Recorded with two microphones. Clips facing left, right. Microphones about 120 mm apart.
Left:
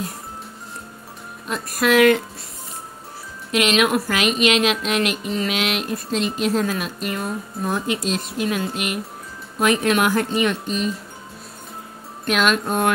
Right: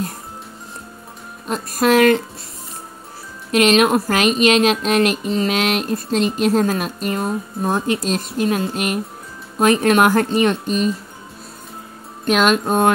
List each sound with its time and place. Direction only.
1.5 s speech: 35° right (ahead or behind)
3.5 s speech: 40° right (ahead or behind)
7.8 s a woman's voice: 40° right (ahead or behind)
12.3 s speech: 35° right (ahead or behind)